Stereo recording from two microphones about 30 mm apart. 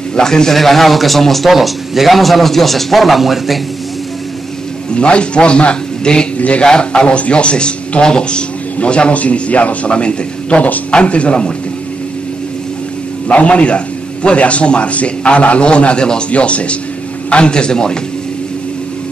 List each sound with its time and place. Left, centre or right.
0.1 s a man's voice: left
0.6 s a man's voice: centre
4.9 s a man's voice: left
6.3 s speech: left
6.6 s a man's voice: left
9.1 s a man's voice: left
9.8 s a man's voice: left
13.3 s a man's voice: left
17.3 s a man's voice: left